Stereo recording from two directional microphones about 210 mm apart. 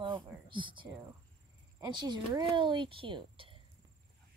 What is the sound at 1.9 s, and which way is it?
Speech, 20° right (ahead or behind).